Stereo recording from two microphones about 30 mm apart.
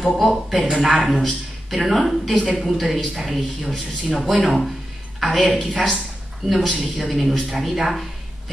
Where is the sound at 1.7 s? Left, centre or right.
Centre.